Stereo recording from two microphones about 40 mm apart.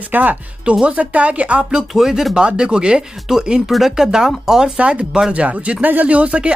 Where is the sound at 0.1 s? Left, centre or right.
Right.